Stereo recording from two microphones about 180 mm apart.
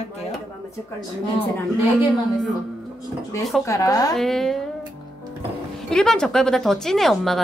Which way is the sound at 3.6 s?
15° left (ahead or behind).